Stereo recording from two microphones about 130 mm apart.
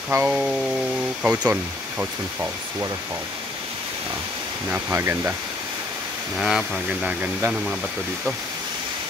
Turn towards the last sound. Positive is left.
turn(degrees=-10)  # may be behind; listen again after turning